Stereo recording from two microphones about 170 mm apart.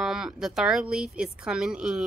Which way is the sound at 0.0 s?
5° right (ahead or behind).